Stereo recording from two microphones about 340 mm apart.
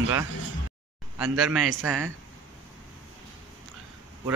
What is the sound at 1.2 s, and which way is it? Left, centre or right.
Speech, centre.